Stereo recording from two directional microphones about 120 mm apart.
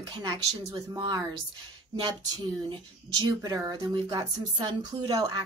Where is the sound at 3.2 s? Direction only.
30° right (ahead or behind).